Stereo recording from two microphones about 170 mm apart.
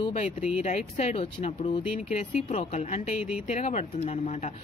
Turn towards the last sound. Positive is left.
turn(degrees=40)  # may be behind; listen again after turning